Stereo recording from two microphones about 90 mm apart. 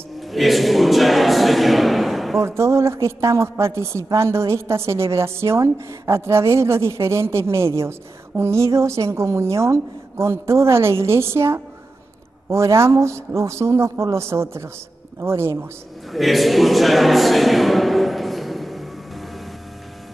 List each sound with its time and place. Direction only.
0.3 s speech: centre (ahead or behind)
2.4 s a woman's voice: 30° right (ahead or behind)
16.1 s a sound: centre (ahead or behind)